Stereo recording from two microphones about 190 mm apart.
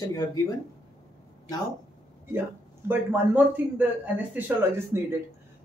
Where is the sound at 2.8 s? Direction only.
15° right (ahead or behind).